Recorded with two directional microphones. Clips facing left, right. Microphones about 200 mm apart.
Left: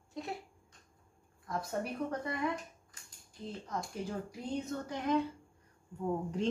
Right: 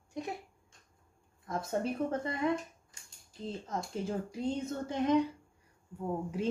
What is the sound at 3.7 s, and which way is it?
Speech, 25° right (ahead or behind).